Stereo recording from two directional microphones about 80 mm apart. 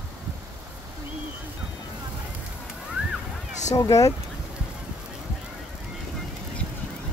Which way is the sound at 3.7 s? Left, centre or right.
Left.